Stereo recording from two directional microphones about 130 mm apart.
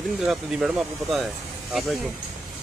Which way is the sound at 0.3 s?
5° right (ahead or behind).